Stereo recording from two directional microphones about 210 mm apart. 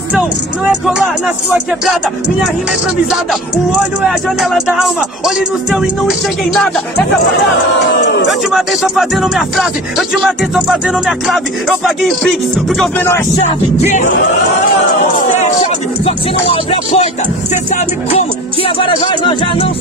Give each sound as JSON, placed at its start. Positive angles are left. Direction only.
{"t": 0.7, "sound": "speech", "side_deg": -5}
{"t": 3.1, "sound": "speech", "side_deg": 0}
{"t": 8.3, "sound": "speech", "side_deg": 0}
{"t": 13.4, "sound": "a sound", "side_deg": 30}
{"t": 15.3, "sound": "speech", "side_deg": 30}
{"t": 18.6, "sound": "music", "side_deg": 25}